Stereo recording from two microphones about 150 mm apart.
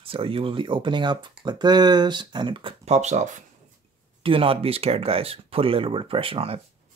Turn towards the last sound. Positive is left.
turn(degrees=-40)  # may be behind; listen again after turning